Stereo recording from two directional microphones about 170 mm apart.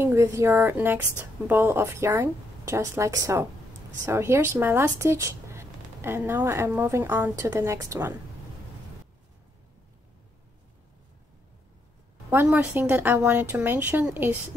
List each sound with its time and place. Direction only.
0.0 s speech: 15° right (ahead or behind)
12.3 s speech: 10° right (ahead or behind)